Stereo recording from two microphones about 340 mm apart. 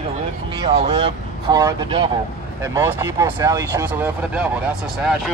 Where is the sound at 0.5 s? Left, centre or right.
Centre.